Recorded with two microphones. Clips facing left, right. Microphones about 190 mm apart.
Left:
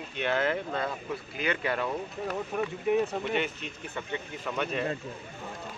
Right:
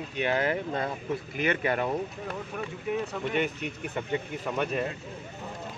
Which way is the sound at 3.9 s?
15° right (ahead or behind).